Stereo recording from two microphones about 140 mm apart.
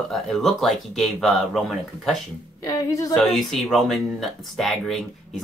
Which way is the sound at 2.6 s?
25° left (ahead or behind).